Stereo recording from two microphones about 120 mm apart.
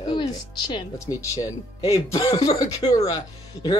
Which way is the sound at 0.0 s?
40° left (ahead or behind).